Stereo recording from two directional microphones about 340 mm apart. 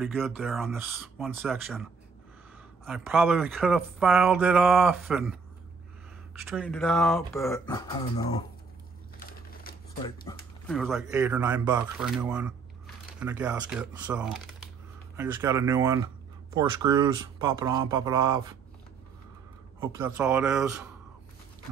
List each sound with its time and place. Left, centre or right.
0.0 s speech: centre
6.5 s speech: centre
9.2 s a sound: left
10.3 s speech: centre
19.8 s speech: centre